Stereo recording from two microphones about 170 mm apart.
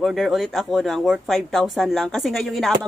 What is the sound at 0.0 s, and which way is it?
Speech, centre (ahead or behind).